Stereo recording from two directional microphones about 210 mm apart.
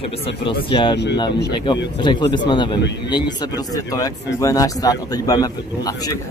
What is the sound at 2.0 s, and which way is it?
Speech, 20° left (ahead or behind).